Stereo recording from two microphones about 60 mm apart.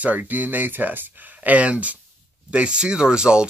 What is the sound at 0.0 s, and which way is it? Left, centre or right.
Speech, right.